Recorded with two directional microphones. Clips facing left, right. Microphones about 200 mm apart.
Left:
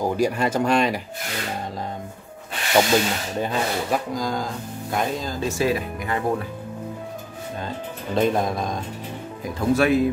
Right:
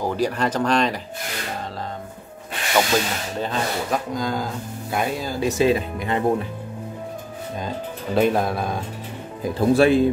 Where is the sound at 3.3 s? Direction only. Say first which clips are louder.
Even; 15° left (ahead or behind).